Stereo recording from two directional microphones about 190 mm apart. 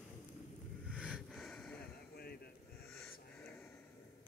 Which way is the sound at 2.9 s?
5° left (ahead or behind).